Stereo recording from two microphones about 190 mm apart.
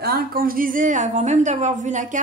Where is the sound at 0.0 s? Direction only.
55° right (ahead or behind).